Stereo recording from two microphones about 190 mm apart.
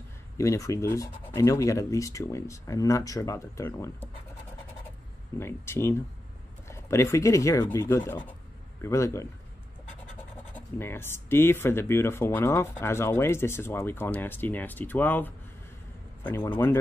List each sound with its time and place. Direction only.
0.4 s speech: 15° left (ahead or behind)
5.4 s speech: 15° left (ahead or behind)
10.5 s speech: 10° left (ahead or behind)